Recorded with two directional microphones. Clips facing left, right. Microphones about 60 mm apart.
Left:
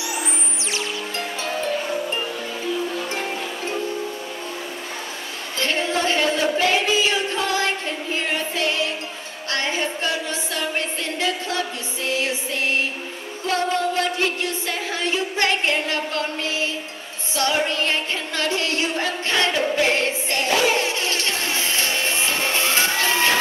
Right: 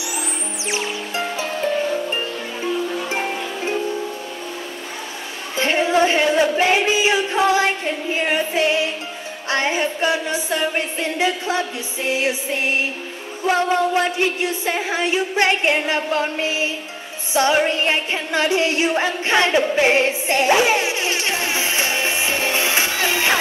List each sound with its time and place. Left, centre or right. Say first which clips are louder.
0.7 s music: right 3 dB; centre
5.6 s a sound: right 6 dB; right
9.5 s music: right 4 dB; right